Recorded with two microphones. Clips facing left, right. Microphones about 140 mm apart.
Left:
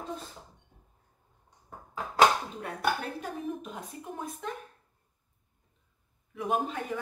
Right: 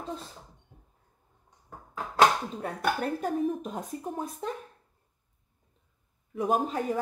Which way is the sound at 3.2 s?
40° right (ahead or behind).